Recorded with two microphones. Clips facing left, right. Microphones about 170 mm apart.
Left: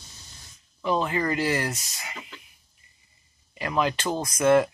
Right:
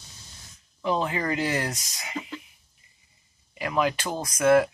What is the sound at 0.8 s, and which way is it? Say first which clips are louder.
Speech: left 1 dB; 15° right (ahead or behind).